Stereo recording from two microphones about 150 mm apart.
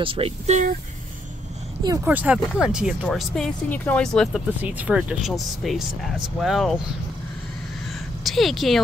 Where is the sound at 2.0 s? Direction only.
10° right (ahead or behind).